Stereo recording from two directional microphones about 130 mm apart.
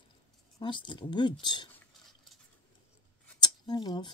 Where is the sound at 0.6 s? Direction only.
40° left (ahead or behind).